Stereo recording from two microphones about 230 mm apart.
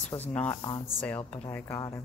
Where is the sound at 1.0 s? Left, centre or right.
Centre.